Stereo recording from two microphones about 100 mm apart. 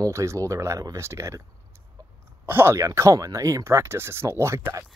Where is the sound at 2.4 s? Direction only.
20° right (ahead or behind).